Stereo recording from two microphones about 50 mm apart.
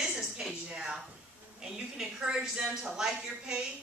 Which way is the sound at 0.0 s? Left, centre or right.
Centre.